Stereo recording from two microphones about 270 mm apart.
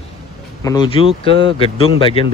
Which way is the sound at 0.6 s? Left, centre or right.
Centre.